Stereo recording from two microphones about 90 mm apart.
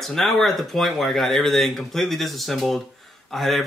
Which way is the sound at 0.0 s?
5° left (ahead or behind).